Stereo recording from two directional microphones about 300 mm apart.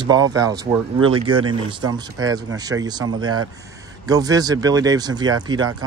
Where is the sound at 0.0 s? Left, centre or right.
Centre.